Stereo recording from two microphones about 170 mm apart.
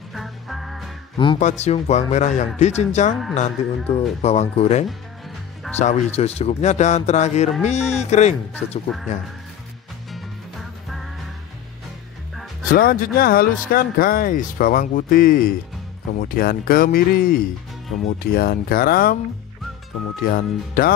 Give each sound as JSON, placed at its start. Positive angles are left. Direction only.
{"t": 0.1, "sound": "music", "side_deg": 0}
{"t": 1.1, "sound": "speech", "side_deg": 30}
{"t": 1.4, "sound": "speech", "side_deg": 40}
{"t": 8.5, "sound": "speech", "side_deg": 10}
{"t": 12.6, "sound": "speech", "side_deg": 55}
{"t": 20.2, "sound": "speech", "side_deg": 60}